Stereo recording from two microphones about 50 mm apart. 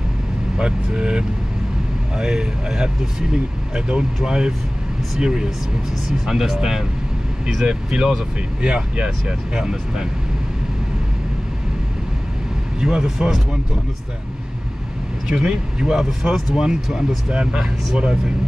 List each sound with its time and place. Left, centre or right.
0.6 s speech: centre
7.6 s speech: centre
12.8 s speech: centre
15.3 s speech: centre
16.1 s speech: centre